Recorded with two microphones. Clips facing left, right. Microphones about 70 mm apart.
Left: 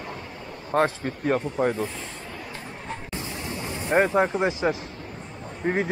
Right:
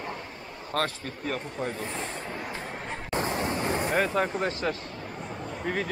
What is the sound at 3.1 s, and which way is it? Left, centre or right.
Waves, right.